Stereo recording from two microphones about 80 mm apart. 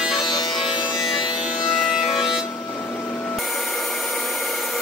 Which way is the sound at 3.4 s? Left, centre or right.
Centre.